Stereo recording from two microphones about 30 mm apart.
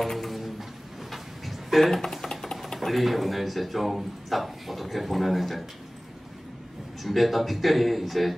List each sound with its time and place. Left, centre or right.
0.0 s a sound: centre
2.0 s typing: centre
2.9 s speech: centre
7.0 s speech: centre